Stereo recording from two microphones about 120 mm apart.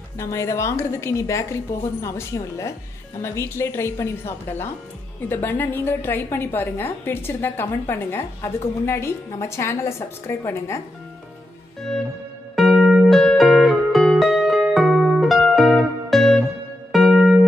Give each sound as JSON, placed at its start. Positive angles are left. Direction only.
{"t": 0.2, "sound": "a woman's voice", "side_deg": 25}
{"t": 12.5, "sound": "music", "side_deg": 0}